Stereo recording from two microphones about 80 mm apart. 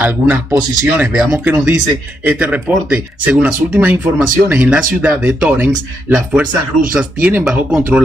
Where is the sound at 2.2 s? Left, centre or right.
Centre.